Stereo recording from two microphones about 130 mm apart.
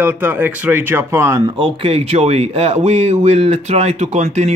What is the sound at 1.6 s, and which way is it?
Speech, 45° right (ahead or behind).